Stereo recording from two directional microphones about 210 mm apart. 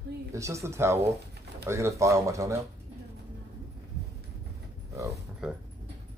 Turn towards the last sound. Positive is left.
turn(degrees=-5)  # may be behind; listen again after turning